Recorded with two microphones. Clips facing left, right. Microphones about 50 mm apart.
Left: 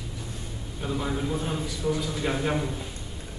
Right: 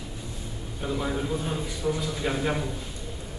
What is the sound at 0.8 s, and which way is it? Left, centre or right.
A man's voice, centre.